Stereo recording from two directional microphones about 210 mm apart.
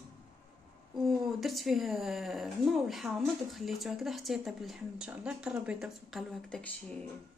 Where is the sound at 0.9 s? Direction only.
Centre (ahead or behind).